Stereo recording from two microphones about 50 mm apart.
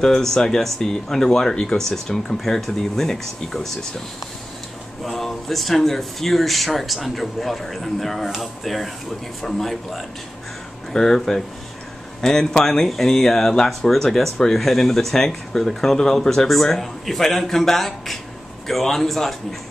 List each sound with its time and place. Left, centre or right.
0.0 s speech: centre
5.0 s speech: centre